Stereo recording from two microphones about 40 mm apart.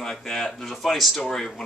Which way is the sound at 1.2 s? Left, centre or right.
Centre.